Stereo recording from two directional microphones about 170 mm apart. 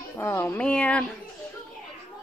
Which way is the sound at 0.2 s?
15° left (ahead or behind).